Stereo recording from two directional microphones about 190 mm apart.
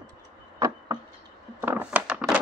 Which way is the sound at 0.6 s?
15° right (ahead or behind).